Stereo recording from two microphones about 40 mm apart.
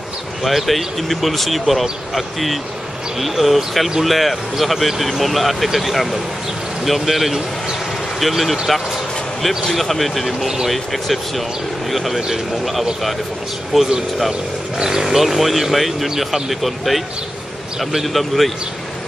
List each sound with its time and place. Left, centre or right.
0.4 s speech: centre
9.8 s speech: centre
13.7 s speech: centre
14.8 s speech: centre
18.0 s speech: centre